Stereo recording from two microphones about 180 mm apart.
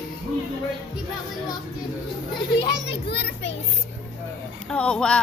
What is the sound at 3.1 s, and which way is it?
Speech, 70° left (ahead or behind).